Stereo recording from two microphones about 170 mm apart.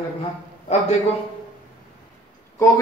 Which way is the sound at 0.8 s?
40° left (ahead or behind).